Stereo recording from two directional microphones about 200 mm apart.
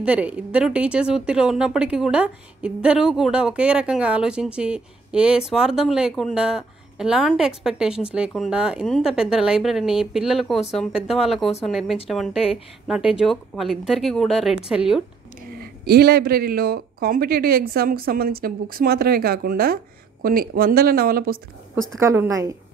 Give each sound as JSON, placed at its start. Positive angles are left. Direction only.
{"t": 0.0, "sound": "speech", "side_deg": -5}
{"t": 15.6, "sound": "speech", "side_deg": -50}
{"t": 22.0, "sound": "a woman's voice", "side_deg": -10}